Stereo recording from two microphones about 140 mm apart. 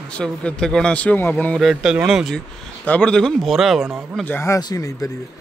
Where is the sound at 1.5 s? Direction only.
5° right (ahead or behind).